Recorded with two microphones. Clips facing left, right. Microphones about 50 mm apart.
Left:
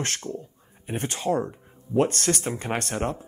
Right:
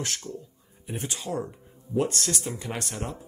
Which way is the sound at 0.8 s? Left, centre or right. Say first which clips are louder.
Left 7 dB; left.